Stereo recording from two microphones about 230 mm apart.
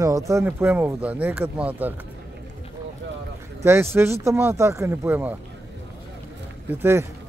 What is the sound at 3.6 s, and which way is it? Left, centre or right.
Speech, centre.